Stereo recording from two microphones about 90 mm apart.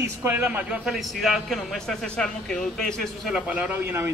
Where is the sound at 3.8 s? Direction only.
30° right (ahead or behind).